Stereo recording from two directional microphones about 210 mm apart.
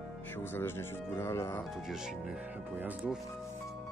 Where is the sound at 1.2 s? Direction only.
10° left (ahead or behind).